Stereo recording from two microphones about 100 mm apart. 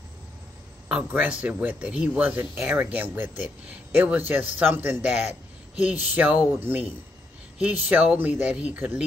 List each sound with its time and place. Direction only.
0.8 s speech: 10° right (ahead or behind)